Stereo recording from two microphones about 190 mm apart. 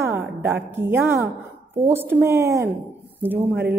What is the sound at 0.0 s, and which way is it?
A woman's voice, 15° right (ahead or behind).